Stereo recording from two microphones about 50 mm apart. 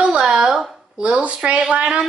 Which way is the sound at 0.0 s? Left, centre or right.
Centre.